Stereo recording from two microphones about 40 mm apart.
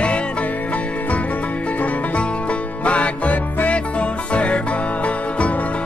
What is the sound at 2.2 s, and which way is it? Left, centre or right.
Music, left.